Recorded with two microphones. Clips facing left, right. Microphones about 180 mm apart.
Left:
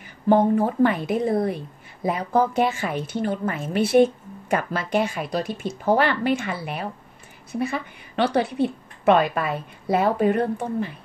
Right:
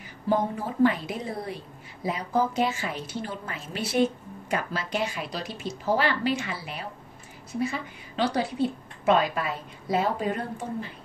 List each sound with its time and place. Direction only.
0.3 s a woman's voice: 55° left (ahead or behind)